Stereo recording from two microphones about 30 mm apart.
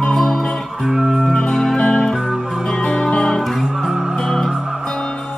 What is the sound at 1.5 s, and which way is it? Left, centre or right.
Music, centre.